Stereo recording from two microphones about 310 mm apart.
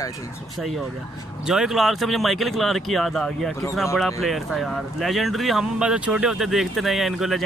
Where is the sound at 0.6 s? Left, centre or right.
Centre.